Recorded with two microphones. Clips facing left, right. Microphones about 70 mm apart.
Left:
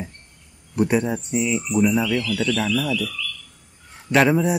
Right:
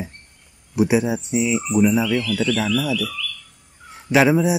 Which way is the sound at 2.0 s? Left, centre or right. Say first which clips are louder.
Right 2 dB; right.